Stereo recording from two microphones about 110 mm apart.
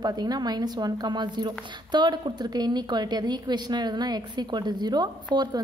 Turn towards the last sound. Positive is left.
turn(degrees=-40)  # may be behind; listen again after turning